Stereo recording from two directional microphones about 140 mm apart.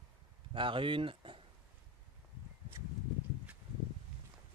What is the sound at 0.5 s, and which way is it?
Speech, 35° right (ahead or behind).